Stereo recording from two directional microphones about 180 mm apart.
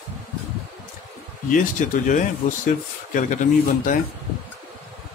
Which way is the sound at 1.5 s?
45° left (ahead or behind).